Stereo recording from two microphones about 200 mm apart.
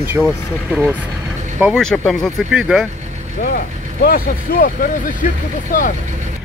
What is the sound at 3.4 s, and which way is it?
Speech, 45° left (ahead or behind).